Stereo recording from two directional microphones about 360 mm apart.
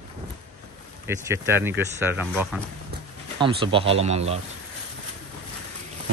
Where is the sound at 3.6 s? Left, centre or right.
Centre.